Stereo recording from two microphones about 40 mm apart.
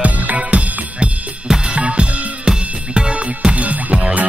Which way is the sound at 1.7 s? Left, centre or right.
Right.